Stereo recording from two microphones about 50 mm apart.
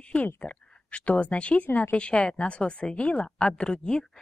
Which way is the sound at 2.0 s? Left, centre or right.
Left.